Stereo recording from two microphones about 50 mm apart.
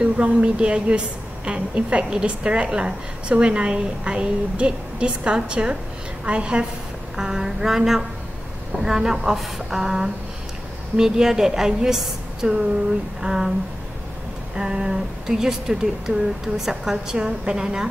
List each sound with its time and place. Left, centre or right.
0.0 s a woman's voice: right
7.2 s speech: centre
14.6 s speech: centre